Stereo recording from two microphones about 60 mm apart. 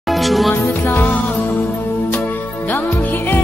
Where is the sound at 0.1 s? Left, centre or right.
Centre.